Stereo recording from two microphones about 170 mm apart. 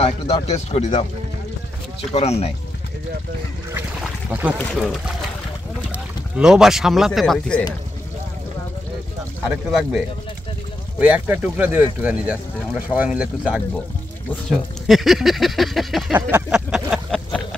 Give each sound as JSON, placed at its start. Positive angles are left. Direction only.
{"t": 0.0, "sound": "speech", "side_deg": 35}
{"t": 4.3, "sound": "speech", "side_deg": -10}
{"t": 9.7, "sound": "speech", "side_deg": 0}
{"t": 16.3, "sound": "a sound", "side_deg": -10}